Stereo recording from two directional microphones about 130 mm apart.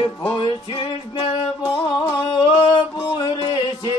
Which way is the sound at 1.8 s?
35° left (ahead or behind).